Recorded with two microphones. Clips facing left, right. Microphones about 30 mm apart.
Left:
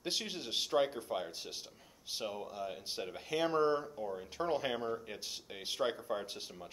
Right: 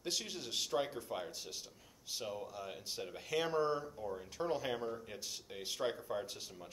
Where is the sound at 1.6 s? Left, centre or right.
Centre.